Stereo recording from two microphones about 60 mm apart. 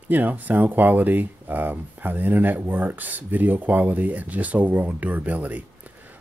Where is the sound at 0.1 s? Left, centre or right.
Right.